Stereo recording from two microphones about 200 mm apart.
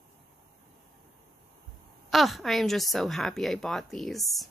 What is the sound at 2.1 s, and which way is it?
Speech, centre (ahead or behind).